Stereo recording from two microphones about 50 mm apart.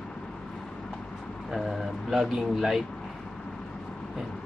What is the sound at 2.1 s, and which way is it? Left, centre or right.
Speech, centre.